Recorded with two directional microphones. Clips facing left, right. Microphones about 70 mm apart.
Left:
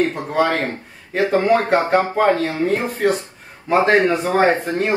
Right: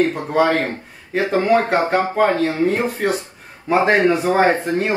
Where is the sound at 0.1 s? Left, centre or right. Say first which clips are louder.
Right 2 dB; centre.